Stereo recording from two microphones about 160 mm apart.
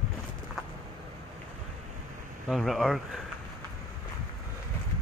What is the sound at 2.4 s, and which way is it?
Speech, centre (ahead or behind).